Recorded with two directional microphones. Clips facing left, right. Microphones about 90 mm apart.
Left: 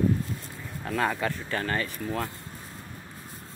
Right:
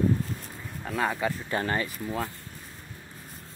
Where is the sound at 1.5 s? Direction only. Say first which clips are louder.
Right 2 dB; 20° right (ahead or behind).